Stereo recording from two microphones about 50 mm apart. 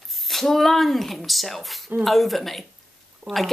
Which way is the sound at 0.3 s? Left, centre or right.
Centre.